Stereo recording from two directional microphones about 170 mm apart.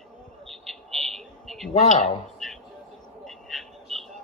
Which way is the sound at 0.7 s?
Centre (ahead or behind).